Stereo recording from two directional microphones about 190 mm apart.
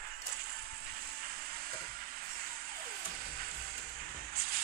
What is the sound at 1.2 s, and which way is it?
Frying, 50° right (ahead or behind).